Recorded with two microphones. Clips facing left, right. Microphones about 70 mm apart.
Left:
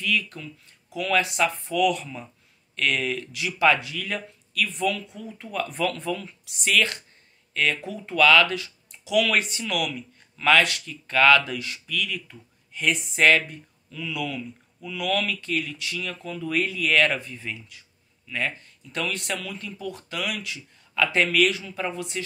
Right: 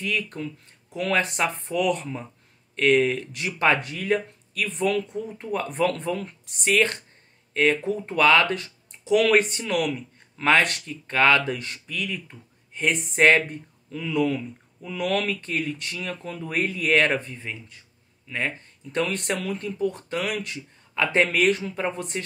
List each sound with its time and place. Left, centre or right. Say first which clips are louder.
0.0 s speech: even; right
5.9 s speech: right 2 dB; right
11.5 s speech: left 2 dB; right